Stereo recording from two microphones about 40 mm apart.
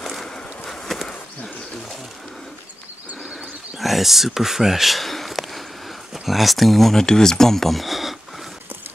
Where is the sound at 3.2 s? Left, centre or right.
Centre.